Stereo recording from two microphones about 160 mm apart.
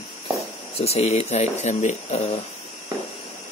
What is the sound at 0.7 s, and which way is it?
Speech, 40° left (ahead or behind).